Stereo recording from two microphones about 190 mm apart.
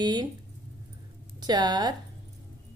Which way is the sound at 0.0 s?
20° right (ahead or behind).